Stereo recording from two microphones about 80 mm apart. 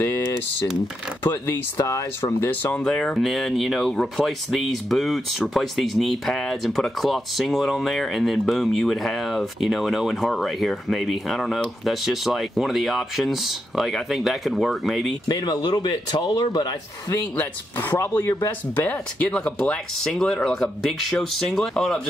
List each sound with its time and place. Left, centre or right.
1.2 s speech: left
1.8 s speech: left
2.4 s speech: centre
15.2 s speech: left
17.4 s speech: left
18.9 s speech: centre